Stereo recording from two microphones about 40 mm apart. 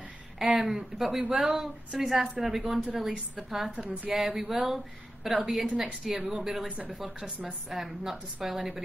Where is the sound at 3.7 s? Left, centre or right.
Right.